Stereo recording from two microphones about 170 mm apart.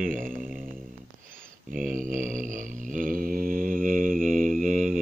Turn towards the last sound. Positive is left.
turn(degrees=-50)  # may be behind; listen again after turning